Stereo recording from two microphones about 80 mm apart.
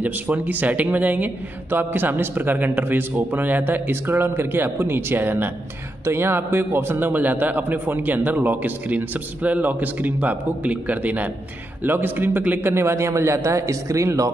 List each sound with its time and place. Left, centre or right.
0.0 s a man's voice: right